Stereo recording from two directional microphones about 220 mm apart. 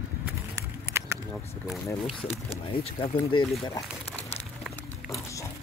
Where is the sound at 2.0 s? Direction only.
25° left (ahead or behind).